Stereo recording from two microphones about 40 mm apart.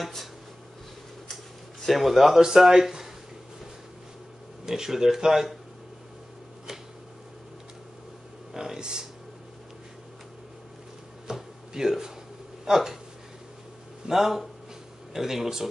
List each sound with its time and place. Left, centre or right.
1.3 s speech: centre
4.6 s speech: centre
8.5 s a sound: centre
11.2 s a sound: centre
12.6 s speech: centre
14.0 s speech: centre